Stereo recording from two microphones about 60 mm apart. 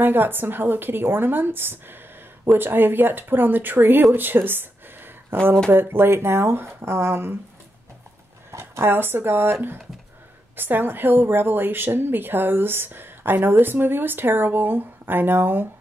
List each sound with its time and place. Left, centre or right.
0.0 s a woman's voice: right
8.5 s a woman's voice: right